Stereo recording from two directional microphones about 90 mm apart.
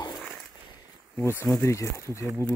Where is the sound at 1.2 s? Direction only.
30° left (ahead or behind).